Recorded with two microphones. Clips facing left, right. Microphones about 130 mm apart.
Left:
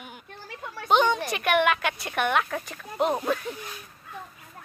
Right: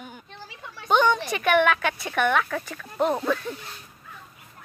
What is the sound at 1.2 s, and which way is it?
Speech, 5° left (ahead or behind).